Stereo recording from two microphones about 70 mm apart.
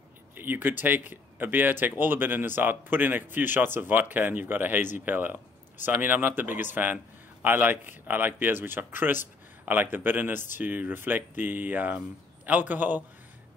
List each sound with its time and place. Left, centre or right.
0.3 s speech: right